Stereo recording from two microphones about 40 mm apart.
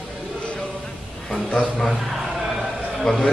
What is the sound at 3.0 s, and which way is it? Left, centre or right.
Speech, centre.